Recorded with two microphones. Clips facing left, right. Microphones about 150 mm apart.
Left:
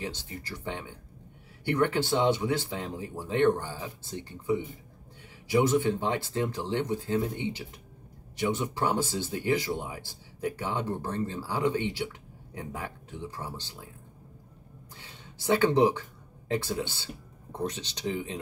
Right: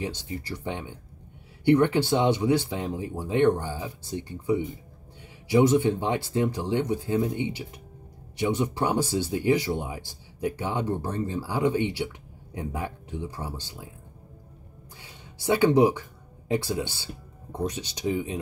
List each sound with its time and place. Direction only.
0.0 s speech: 15° right (ahead or behind)
15.0 s a sound: 15° right (ahead or behind)
16.6 s speech: 15° right (ahead or behind)